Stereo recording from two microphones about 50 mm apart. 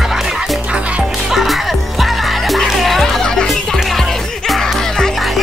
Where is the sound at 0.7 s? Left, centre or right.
Right.